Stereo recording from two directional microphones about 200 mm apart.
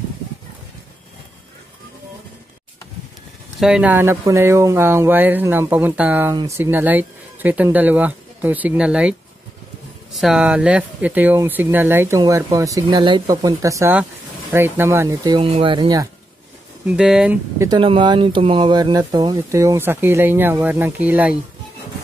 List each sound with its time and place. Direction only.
3.5 s speech: 5° right (ahead or behind)
10.1 s speech: centre (ahead or behind); by 16.1 s 20° right (ahead or behind)
16.8 s speech: 5° right (ahead or behind)
17.6 s speech: 20° right (ahead or behind)